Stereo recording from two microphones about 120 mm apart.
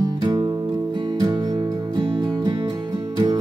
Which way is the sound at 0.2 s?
40° right (ahead or behind).